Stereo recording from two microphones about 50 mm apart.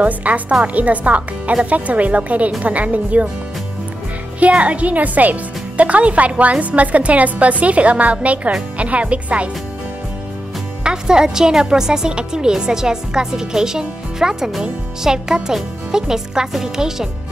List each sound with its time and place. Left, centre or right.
0.0 s speech: right
4.4 s speech: right
10.8 s a woman's voice: centre